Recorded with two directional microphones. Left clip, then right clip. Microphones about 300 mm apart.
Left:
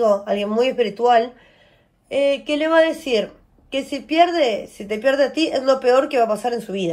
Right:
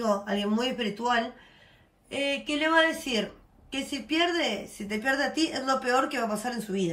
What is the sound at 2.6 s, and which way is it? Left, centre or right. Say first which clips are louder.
Speech: left 6 dB; centre.